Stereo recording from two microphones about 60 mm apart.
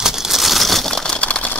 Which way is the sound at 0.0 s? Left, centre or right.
Centre.